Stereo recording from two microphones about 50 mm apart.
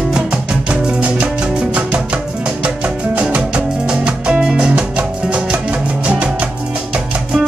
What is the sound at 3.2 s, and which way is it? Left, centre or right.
Music, right.